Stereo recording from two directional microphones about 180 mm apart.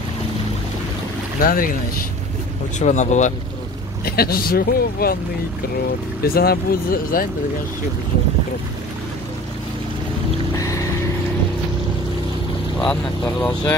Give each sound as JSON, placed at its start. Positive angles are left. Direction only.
{"t": 1.4, "sound": "speech", "side_deg": 50}
{"t": 2.8, "sound": "speech", "side_deg": 40}
{"t": 4.0, "sound": "speech", "side_deg": 55}
{"t": 6.2, "sound": "speech", "side_deg": 55}
{"t": 12.7, "sound": "speech", "side_deg": 5}